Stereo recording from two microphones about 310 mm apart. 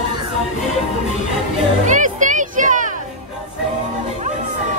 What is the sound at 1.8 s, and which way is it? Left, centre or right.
Music, right.